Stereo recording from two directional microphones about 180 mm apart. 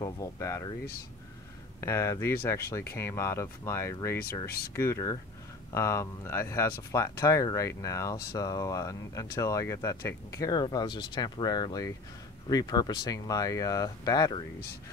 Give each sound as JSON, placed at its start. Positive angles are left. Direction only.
{"t": 0.0, "sound": "speech", "side_deg": 20}
{"t": 1.8, "sound": "speech", "side_deg": 15}